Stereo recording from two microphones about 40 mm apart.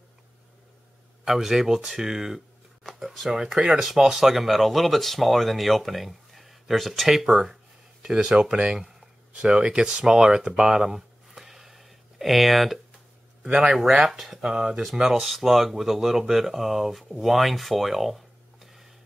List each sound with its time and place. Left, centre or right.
1.2 s speech: centre
10.8 s a sound: centre
13.4 s speech: centre
14.4 s speech: right; by 18.9 s centre